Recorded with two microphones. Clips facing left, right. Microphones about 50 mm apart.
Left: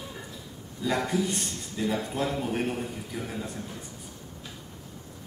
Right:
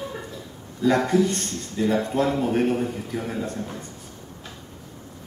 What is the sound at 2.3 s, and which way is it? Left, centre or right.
A man's voice, centre.